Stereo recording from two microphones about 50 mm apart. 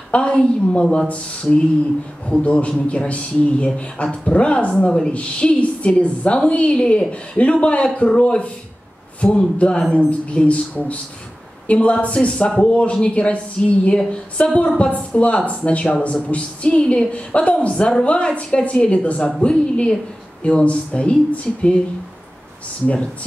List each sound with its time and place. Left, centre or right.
0.1 s speech: centre